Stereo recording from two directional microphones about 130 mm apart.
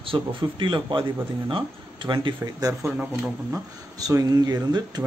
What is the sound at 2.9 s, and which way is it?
Speech, 15° right (ahead or behind).